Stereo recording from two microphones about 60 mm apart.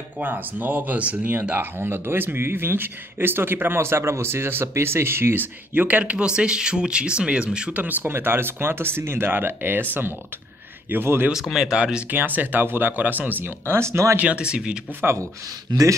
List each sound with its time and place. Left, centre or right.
0.2 s speech: right
7.7 s speech: right
11.3 s speech: centre
12.1 s speech: right
14.1 s speech: right